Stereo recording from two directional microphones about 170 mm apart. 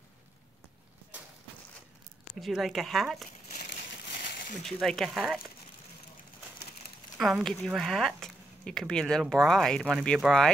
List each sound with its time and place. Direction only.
2.4 s speech: centre (ahead or behind)
4.2 s a sound: 70° left (ahead or behind)
4.6 s speech: centre (ahead or behind)
7.2 s speech: centre (ahead or behind)